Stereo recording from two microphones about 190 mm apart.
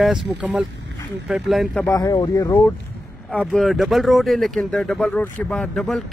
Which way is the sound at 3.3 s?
Centre (ahead or behind).